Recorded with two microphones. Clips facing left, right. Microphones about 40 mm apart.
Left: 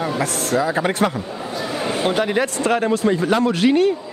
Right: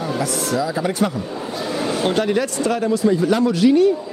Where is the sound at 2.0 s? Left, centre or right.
Centre.